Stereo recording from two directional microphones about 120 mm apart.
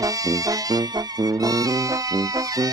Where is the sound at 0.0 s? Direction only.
30° right (ahead or behind).